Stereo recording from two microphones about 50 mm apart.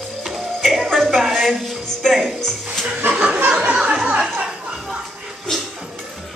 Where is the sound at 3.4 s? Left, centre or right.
Right.